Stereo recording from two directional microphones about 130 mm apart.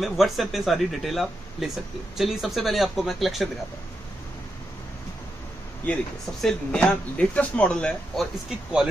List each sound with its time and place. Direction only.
0.0 s speech: centre (ahead or behind)
6.4 s speech: 5° left (ahead or behind)